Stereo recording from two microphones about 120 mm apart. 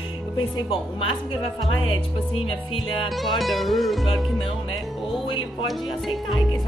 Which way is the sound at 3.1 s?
Centre (ahead or behind).